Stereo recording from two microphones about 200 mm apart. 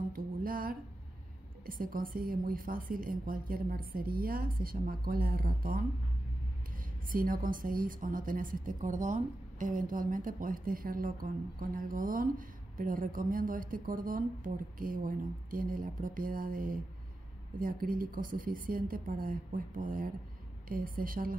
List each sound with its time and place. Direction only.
0.1 s a woman's voice: 45° right (ahead or behind)
7.1 s a woman's voice: 45° right (ahead or behind)